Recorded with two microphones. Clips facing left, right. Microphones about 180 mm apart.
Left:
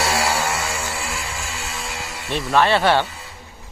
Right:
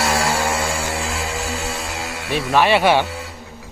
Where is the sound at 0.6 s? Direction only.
30° right (ahead or behind).